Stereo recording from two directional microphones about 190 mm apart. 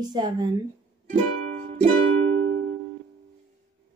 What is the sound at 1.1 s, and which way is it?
Music, 40° right (ahead or behind).